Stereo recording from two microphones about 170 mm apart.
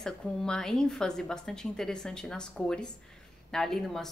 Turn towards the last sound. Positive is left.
turn(degrees=0)  # may be behind; listen again after turning